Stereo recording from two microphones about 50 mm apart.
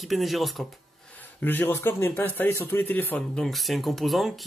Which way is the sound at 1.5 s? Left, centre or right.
Left.